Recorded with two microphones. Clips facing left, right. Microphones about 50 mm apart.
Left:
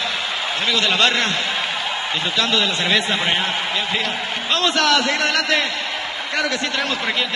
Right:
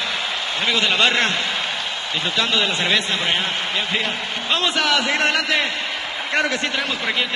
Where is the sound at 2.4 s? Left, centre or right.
Centre.